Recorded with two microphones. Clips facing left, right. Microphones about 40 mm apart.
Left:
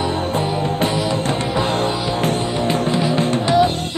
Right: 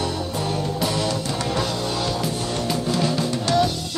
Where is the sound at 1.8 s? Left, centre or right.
Left.